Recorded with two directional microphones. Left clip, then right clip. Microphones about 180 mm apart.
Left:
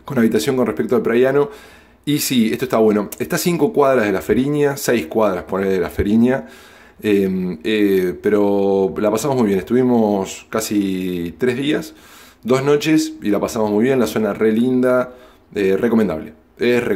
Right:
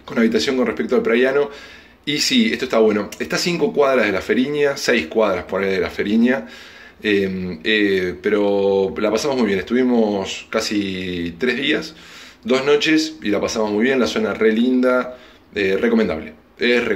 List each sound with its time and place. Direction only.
0.0 s speech: 45° left (ahead or behind)